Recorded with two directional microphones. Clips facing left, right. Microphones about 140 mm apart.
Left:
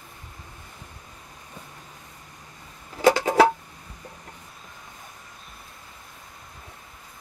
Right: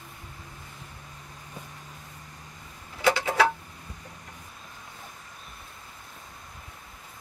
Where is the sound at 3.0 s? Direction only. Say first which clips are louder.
Left 6 dB; 40° left (ahead or behind).